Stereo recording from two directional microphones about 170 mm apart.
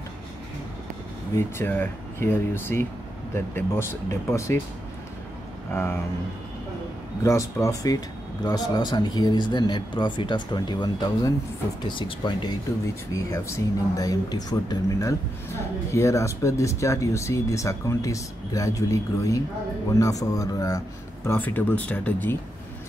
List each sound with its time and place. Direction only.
1.3 s speech: 15° left (ahead or behind)
5.7 s speech: 15° left (ahead or behind)
7.2 s speech: 15° left (ahead or behind)